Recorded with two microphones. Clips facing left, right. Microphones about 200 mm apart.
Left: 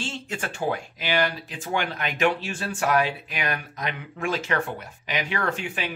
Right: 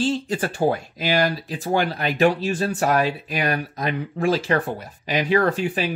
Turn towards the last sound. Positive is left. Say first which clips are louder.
# right 8 dB
turn(degrees=-35)  # may be behind; listen again after turning